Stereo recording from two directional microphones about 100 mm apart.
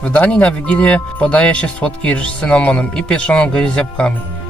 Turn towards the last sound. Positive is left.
turn(degrees=10)  # may be behind; listen again after turning